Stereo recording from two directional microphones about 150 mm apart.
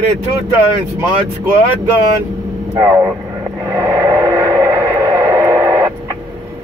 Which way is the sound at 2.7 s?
15° right (ahead or behind).